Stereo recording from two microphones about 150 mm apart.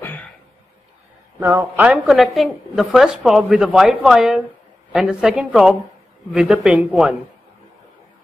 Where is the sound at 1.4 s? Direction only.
15° right (ahead or behind).